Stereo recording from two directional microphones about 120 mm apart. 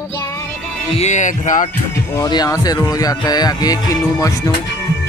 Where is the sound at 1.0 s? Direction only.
85° left.